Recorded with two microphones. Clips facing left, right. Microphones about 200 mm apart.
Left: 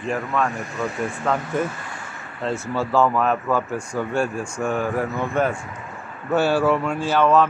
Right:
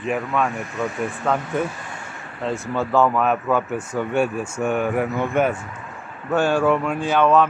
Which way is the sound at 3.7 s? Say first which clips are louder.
Right 1 dB; 20° right (ahead or behind).